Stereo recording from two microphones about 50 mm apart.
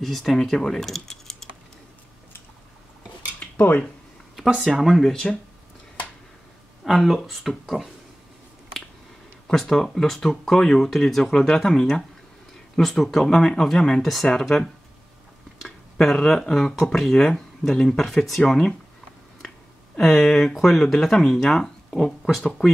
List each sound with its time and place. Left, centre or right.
0.0 s speech: centre
3.3 s dishes: left
4.6 s speech: centre
6.8 s speech: centre
9.6 s speech: centre
20.0 s speech: centre